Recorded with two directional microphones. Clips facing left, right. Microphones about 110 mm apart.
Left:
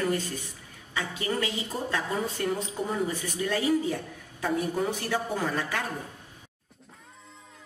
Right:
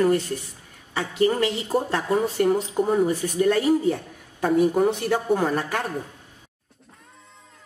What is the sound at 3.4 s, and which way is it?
A man's voice, 55° right (ahead or behind).